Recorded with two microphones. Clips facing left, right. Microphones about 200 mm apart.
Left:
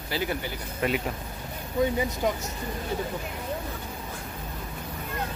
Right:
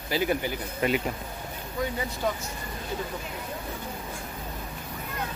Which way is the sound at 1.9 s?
15° left (ahead or behind).